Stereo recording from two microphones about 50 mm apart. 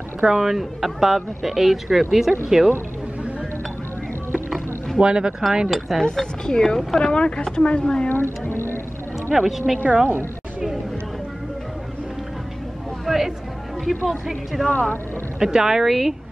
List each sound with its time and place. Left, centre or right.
0.2 s speech: centre
4.9 s speech: centre
5.9 s speech: centre
6.8 s speech: centre
7.1 s speech: left
8.1 s a sound: left
9.3 s speech: centre
13.0 s a sound: centre
13.8 s speech: centre